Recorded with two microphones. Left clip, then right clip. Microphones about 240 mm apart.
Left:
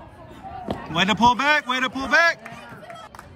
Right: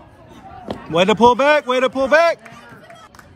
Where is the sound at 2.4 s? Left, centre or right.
Left.